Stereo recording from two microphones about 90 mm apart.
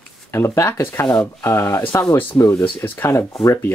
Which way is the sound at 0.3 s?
30° left (ahead or behind).